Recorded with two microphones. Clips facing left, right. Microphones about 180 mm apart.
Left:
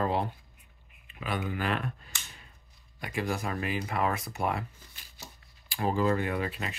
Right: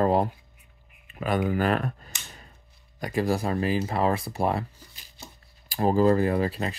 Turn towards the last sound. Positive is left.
turn(degrees=-35)  # may be behind; listen again after turning